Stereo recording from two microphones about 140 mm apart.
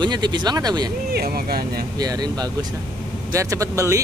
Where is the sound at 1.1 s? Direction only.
90° right.